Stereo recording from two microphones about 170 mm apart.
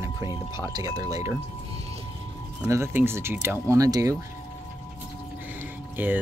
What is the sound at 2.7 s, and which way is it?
Speech, 15° right (ahead or behind).